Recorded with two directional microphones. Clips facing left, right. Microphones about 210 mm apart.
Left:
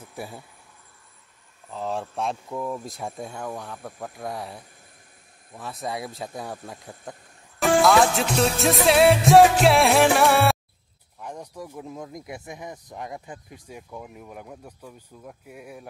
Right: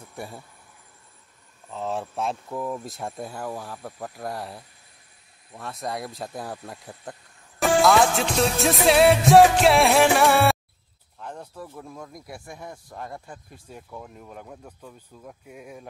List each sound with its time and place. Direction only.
0.0 s speech: 5° left (ahead or behind)
1.7 s speech: centre (ahead or behind)
11.1 s speech: 10° left (ahead or behind)